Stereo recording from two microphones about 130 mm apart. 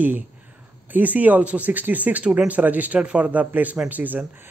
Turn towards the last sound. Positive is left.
turn(degrees=-10)  # may be behind; listen again after turning